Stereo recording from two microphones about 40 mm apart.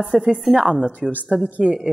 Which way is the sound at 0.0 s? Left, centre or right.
Right.